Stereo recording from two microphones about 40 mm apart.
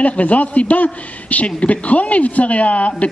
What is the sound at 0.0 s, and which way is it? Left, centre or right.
A man's voice, left.